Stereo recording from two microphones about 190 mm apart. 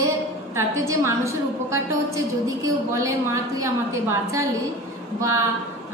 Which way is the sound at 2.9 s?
15° right (ahead or behind).